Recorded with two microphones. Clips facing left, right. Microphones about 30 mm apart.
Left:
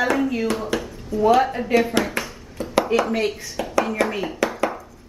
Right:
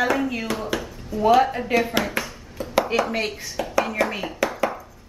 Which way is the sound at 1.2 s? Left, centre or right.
Centre.